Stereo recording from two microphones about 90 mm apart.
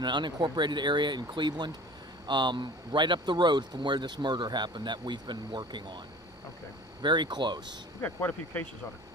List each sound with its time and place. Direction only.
0.0 s speech: 55° right (ahead or behind)
7.0 s speech: 55° right (ahead or behind)
8.0 s speech: 20° left (ahead or behind)